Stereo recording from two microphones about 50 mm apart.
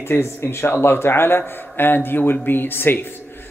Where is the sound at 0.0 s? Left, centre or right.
Left.